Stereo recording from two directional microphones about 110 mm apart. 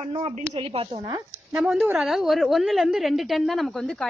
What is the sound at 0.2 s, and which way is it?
Speech, 60° right (ahead or behind).